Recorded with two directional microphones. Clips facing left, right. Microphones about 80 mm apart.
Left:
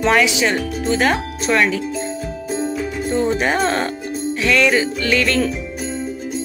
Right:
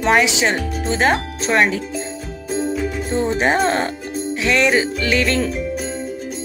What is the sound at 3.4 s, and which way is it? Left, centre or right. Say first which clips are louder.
Music: right 1 dB; right.